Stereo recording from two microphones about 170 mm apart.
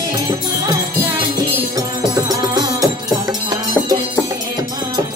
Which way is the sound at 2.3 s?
20° right (ahead or behind).